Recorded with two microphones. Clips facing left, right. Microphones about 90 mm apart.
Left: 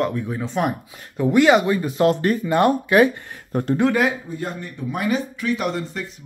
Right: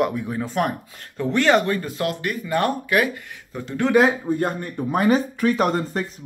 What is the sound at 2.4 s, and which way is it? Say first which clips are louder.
Speech: left 3 dB; 20° left (ahead or behind).